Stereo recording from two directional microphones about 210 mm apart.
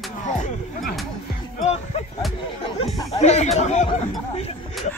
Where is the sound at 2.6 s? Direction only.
25° left (ahead or behind).